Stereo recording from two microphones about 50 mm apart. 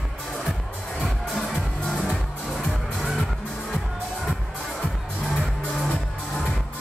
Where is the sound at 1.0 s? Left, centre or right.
Centre.